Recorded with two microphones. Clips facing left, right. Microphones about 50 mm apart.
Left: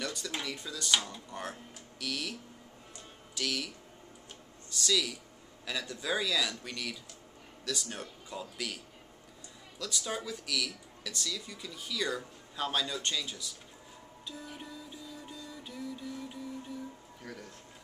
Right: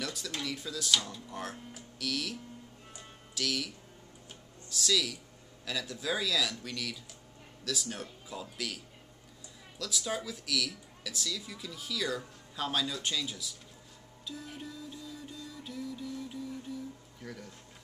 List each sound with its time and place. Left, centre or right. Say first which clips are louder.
0.0 s a sound: left 1 dB; centre
0.3 s speech: even; centre
0.6 s speech: right 1 dB; centre
0.9 s speech: even; centre
1.3 s speech: right 1 dB; centre
3.3 s speech: right 1 dB; centre
14.2 s music: right 2 dB; centre
17.2 s a sound: right 1 dB; centre